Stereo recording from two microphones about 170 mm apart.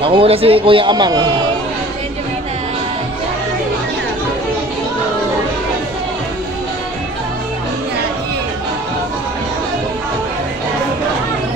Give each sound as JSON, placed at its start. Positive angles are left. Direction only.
{"t": 0.0, "sound": "speech", "side_deg": -35}